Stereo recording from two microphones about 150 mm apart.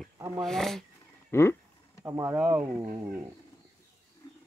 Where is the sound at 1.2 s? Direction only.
15° left (ahead or behind).